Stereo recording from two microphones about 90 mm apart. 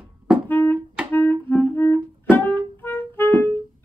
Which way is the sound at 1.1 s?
20° left (ahead or behind).